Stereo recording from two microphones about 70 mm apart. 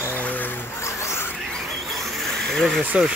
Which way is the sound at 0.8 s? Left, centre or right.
Left.